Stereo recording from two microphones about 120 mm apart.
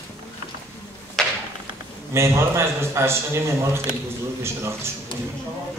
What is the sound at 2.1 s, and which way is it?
A man's voice, 20° right (ahead or behind).